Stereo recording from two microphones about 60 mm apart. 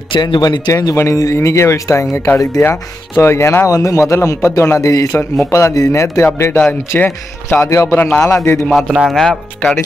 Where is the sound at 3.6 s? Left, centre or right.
Left.